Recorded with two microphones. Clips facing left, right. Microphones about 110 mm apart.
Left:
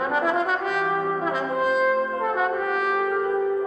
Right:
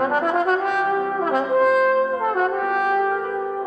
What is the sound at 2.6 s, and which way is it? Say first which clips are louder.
French horn: right 4 dB; 55° right (ahead or behind).